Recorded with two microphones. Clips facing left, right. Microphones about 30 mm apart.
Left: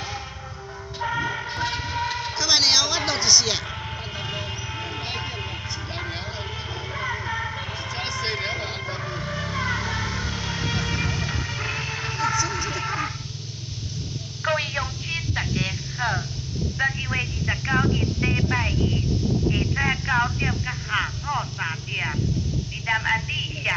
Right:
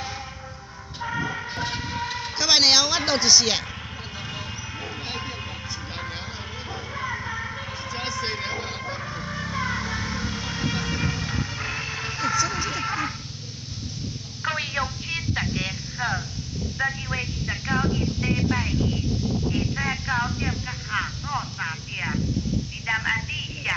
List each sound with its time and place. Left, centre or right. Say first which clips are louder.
1.0 s vehicle: left 2 dB; centre
2.3 s a man's voice: right 2 dB; right
7.0 s music: left 2 dB; centre
8.2 s vehicle: left 4 dB; left
9.4 s vehicle: left 1 dB; left
11.3 s music: left 1 dB; centre
12.4 s vehicle: even; centre
14.4 s telephone: left 2 dB; centre
15.6 s vehicle: left 2 dB; centre
16.7 s a sound: left 2 dB; left
17.6 s a sound: left 1 dB; left
19.5 s vehicle: left 2 dB; left; by 22.1 s centre
22.8 s speech: left 2 dB; centre
23.1 s telephone: left 3 dB; centre